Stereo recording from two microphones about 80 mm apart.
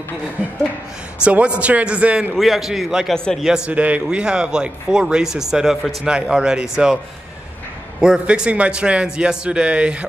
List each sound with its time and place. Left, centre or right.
1.2 s a man's voice: centre
2.3 s a man's voice: centre
8.0 s a man's voice: centre